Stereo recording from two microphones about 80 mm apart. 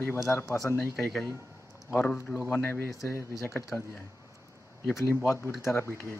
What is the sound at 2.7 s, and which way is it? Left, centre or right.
Speech, left.